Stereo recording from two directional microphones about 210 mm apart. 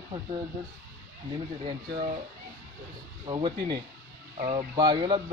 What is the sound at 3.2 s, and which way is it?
Speech, 20° right (ahead or behind).